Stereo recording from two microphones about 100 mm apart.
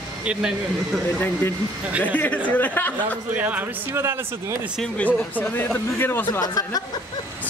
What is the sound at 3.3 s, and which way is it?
Speech, 15° right (ahead or behind).